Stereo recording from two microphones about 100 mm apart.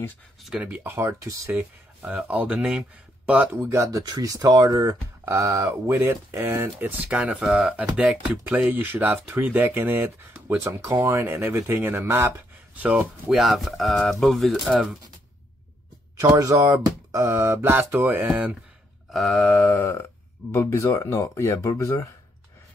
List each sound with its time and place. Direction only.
0.6 s speech: 15° right (ahead or behind)
3.6 s speech: 30° right (ahead or behind)
7.1 s speech: 10° right (ahead or behind)
13.3 s speech: centre (ahead or behind)
16.3 s speech: 35° right (ahead or behind); by 18.6 s 15° right (ahead or behind)
19.0 s a sound: centre (ahead or behind); by 20.1 s 20° left (ahead or behind)
20.5 s speech: 25° left (ahead or behind)